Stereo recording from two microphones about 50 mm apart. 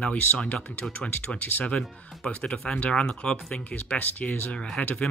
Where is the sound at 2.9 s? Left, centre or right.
Centre.